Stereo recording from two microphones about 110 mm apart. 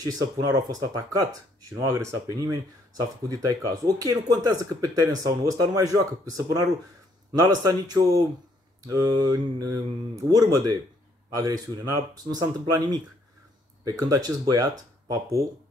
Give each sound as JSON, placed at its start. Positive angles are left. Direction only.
{"t": 0.0, "sound": "speech", "side_deg": -35}